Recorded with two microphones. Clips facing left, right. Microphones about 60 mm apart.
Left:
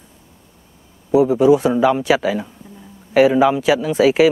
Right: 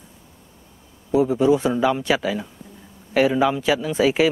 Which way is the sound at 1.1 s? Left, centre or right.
Centre.